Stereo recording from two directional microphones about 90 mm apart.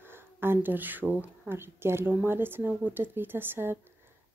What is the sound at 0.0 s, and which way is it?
Speech, 25° right (ahead or behind).